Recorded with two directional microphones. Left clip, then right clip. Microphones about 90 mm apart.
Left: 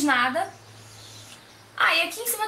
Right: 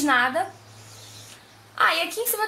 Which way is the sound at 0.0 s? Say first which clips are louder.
Right 1 dB; 20° right (ahead or behind).